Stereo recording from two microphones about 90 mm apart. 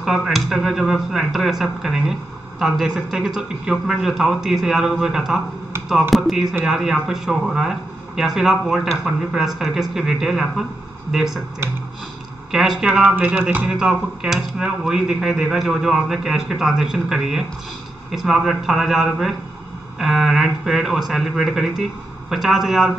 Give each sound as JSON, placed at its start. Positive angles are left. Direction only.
{"t": 0.0, "sound": "speech", "side_deg": 0}
{"t": 12.4, "sound": "speech", "side_deg": -5}
{"t": 13.0, "sound": "speech", "side_deg": -15}